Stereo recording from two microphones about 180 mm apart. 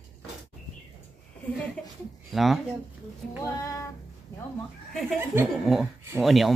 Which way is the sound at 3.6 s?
15° left (ahead or behind).